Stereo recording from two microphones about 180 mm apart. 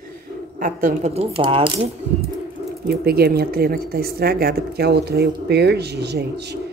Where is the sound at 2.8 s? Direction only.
60° right (ahead or behind).